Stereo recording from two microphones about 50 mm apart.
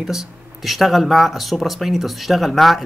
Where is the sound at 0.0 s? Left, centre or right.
Centre.